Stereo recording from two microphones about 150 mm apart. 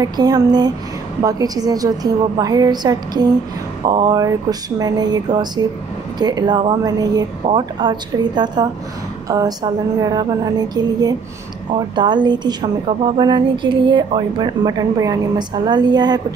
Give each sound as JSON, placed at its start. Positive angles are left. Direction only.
{"t": 0.0, "sound": "a woman's voice", "side_deg": -25}